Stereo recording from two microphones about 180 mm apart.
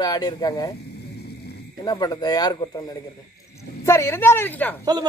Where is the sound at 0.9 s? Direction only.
65° left (ahead or behind).